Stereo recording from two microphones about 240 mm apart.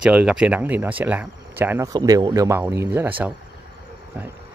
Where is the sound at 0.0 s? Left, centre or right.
Centre.